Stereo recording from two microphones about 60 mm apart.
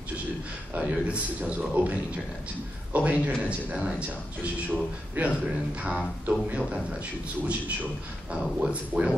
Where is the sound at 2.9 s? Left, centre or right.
Right.